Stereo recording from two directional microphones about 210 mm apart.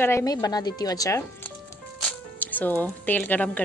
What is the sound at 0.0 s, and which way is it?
Speech, 15° left (ahead or behind).